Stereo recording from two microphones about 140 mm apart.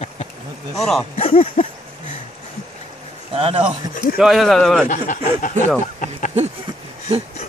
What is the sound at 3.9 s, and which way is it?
Speech, 90° left.